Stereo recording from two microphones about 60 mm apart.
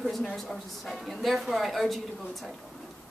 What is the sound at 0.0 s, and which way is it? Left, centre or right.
A woman's voice, centre.